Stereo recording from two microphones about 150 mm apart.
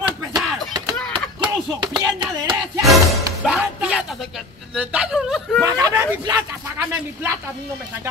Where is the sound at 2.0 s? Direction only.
30° right (ahead or behind).